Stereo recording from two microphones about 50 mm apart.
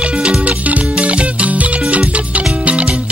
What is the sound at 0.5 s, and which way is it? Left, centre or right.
Music, right.